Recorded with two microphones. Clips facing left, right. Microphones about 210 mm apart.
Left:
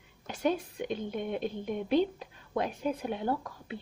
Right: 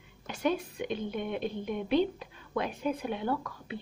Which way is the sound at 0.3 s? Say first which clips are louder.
Even; 40° left (ahead or behind).